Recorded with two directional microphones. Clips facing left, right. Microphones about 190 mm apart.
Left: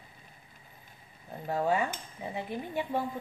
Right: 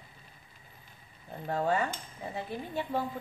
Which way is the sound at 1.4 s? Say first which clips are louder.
Left 1 dB; 10° left (ahead or behind).